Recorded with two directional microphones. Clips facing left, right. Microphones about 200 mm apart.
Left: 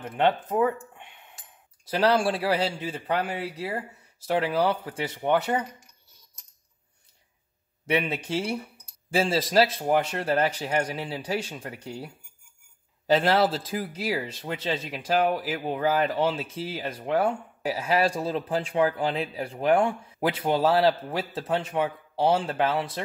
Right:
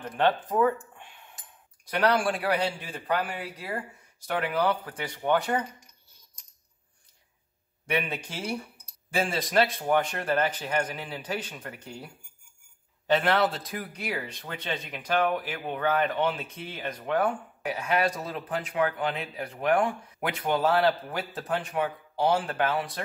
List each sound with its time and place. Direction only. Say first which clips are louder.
0.2 s speech: left 1 dB; 25° left (ahead or behind)
0.9 s cutlery: left 1 dB; 20° left (ahead or behind)
1.9 s speech: left 2 dB; 25° left (ahead or behind)
7.8 s speech: left 4 dB; 25° left (ahead or behind)